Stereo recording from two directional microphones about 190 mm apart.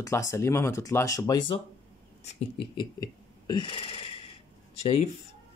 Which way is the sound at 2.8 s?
20° left (ahead or behind).